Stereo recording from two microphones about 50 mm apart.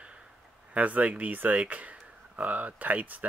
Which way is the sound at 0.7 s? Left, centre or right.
Right.